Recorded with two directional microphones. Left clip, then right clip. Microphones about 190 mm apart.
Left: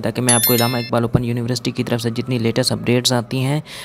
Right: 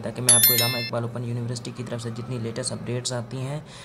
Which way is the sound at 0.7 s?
40° left (ahead or behind).